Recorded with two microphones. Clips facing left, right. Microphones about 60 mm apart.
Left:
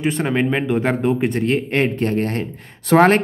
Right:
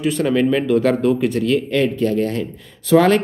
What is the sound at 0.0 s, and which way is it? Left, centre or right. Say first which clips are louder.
Speech: right 2 dB; left.